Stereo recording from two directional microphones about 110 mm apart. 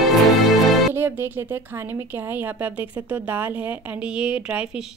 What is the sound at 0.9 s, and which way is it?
Speech, 20° right (ahead or behind).